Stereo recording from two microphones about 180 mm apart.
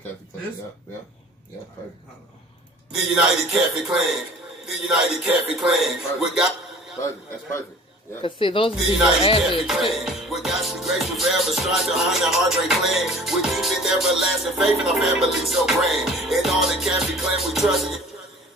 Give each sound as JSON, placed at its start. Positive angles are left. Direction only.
{"t": 2.9, "sound": "music", "side_deg": -5}
{"t": 8.2, "sound": "speech", "side_deg": 30}
{"t": 9.4, "sound": "music", "side_deg": 0}